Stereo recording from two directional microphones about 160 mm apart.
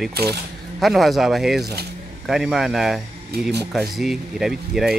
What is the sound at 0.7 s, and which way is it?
Speech, centre (ahead or behind).